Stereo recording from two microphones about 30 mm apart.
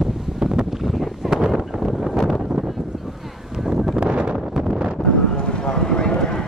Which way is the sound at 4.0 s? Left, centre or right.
Right.